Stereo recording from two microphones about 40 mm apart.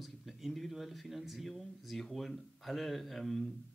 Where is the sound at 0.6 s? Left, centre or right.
Centre.